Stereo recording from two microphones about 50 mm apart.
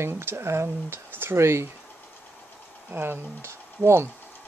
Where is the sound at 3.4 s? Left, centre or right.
Right.